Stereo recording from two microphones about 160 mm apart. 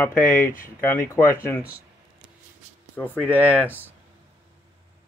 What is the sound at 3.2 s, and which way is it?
Speech, 10° left (ahead or behind).